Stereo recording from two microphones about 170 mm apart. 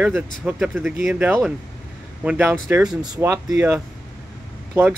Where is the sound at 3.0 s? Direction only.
20° right (ahead or behind).